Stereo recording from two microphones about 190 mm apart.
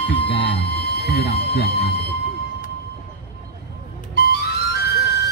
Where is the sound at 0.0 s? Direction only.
60° left (ahead or behind).